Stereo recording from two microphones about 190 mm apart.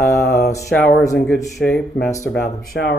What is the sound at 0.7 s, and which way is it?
Speech, 5° left (ahead or behind).